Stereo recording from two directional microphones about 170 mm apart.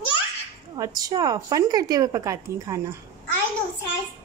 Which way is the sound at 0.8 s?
20° right (ahead or behind).